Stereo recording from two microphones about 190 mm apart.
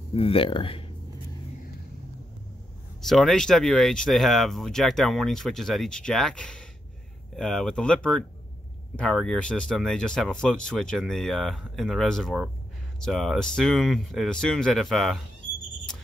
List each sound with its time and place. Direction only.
0.1 s speech: 30° left (ahead or behind)
3.0 s speech: centre (ahead or behind)